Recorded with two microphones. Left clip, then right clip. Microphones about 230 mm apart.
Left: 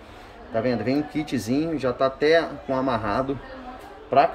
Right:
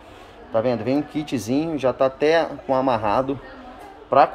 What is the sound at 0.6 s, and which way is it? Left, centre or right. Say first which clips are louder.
Speech: right 3 dB; centre.